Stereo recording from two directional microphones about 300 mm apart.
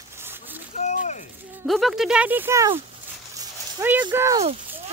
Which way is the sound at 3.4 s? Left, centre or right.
Centre.